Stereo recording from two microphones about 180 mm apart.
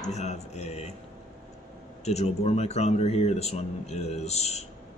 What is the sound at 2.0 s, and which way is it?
Speech, 35° left (ahead or behind).